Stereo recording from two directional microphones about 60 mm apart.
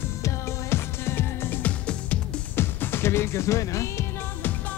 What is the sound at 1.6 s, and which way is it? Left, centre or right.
Music, left.